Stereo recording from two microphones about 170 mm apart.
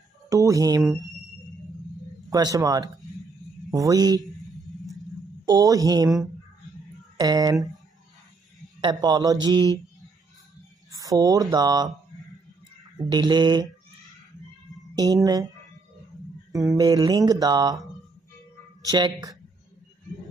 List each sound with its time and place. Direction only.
0.3 s speech: 20° right (ahead or behind)
2.2 s speech: 20° right (ahead or behind)
5.4 s speech: 20° right (ahead or behind)
7.2 s speech: 25° right (ahead or behind)
8.8 s speech: 25° right (ahead or behind)
10.9 s a sound: 20° right (ahead or behind)
11.5 s speech: 25° right (ahead or behind)
12.9 s speech: 25° right (ahead or behind)
16.5 s speech: 20° right (ahead or behind)
18.9 s speech: 25° right (ahead or behind)